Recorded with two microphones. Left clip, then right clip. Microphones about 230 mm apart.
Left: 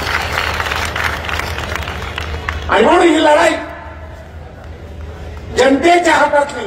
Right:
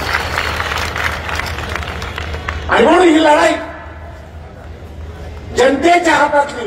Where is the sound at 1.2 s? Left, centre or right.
Left.